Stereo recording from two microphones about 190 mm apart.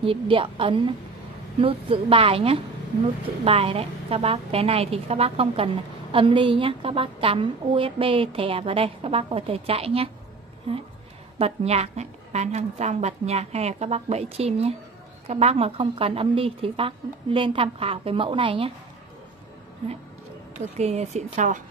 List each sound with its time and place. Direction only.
0.0 s a woman's voice: 30° right (ahead or behind)
11.3 s a woman's voice: 35° right (ahead or behind)
20.7 s a woman's voice: 35° right (ahead or behind)